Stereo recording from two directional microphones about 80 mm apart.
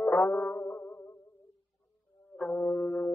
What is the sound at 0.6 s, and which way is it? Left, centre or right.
Music, left.